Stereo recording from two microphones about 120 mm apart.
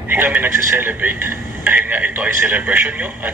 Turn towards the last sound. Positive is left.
turn(degrees=-15)  # may be behind; listen again after turning